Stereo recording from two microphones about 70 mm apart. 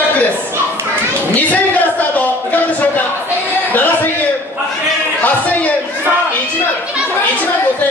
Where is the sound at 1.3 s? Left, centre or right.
Left.